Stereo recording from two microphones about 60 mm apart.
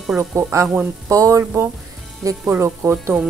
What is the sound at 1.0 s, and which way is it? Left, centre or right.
Speech, right.